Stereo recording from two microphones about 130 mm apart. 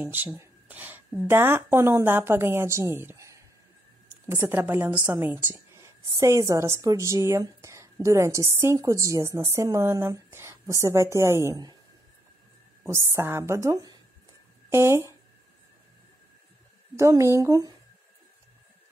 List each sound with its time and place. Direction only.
0.0 s a woman's voice: 15° right (ahead or behind)
12.8 s a woman's voice: 20° right (ahead or behind)
16.9 s a woman's voice: 20° right (ahead or behind)